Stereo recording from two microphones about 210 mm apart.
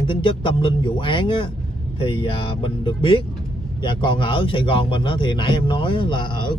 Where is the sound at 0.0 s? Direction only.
25° left (ahead or behind).